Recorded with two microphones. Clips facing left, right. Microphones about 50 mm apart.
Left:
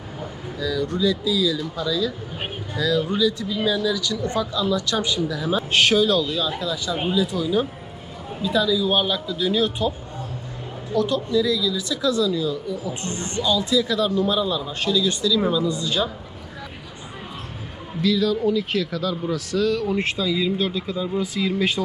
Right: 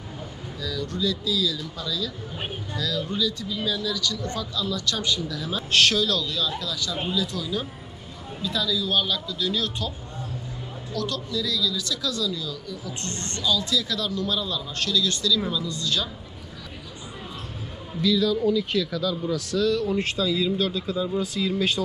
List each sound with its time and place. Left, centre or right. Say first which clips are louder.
0.6 s speech: left 6 dB; centre
18.2 s speech: left 1 dB; left
21.4 s speech: left 3 dB; left